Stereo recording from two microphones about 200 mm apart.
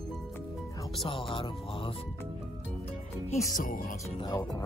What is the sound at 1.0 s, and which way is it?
Speech, 25° left (ahead or behind).